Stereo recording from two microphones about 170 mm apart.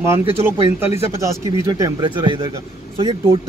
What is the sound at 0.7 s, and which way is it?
Speech, 15° right (ahead or behind).